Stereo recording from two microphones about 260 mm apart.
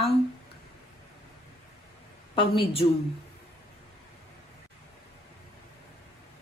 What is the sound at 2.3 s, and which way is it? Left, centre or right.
Speech, left.